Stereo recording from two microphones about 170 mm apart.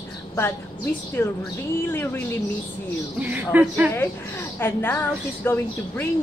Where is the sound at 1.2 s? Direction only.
10° left (ahead or behind).